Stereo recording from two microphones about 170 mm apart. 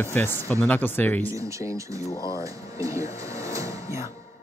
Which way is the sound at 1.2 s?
15° right (ahead or behind).